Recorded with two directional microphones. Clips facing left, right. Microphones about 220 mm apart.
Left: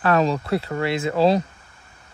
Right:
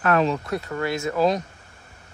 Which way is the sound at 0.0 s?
30° left (ahead or behind).